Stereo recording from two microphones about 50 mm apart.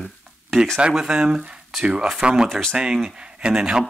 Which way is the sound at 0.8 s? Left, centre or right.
Centre.